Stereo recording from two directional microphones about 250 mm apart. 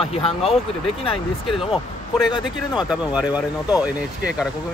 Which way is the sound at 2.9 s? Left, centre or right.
Centre.